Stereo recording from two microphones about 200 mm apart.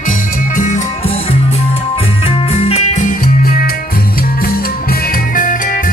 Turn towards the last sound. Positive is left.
turn(degrees=40)  # may be behind; listen again after turning